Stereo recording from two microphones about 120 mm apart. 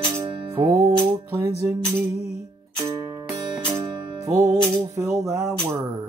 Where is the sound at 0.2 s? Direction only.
25° right (ahead or behind).